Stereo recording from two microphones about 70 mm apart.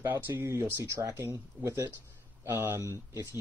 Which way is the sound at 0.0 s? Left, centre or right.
Right.